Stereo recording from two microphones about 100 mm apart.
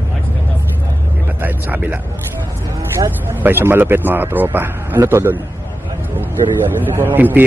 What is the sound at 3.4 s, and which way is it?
A man's voice, 20° right (ahead or behind).